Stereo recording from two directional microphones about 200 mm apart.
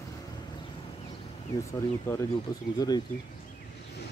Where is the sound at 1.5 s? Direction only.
20° left (ahead or behind).